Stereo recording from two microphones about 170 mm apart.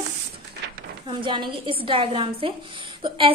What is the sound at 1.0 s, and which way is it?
A woman's voice, 30° right (ahead or behind).